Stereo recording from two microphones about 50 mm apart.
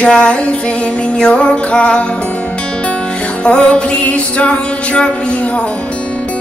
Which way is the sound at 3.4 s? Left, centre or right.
Left.